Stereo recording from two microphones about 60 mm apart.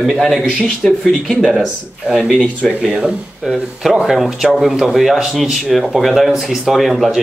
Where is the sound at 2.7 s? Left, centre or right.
Centre.